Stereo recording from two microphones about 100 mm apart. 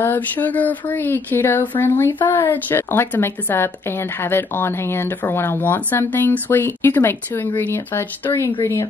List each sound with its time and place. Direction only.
0.0 s speech: 20° left (ahead or behind)